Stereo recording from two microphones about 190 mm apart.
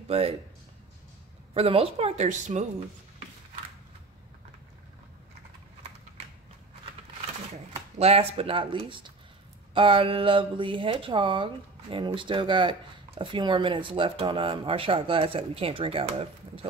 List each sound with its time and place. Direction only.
0.1 s a woman's voice: 30° right (ahead or behind)
1.5 s a woman's voice: 30° right (ahead or behind)
8.0 s speech: 30° right (ahead or behind)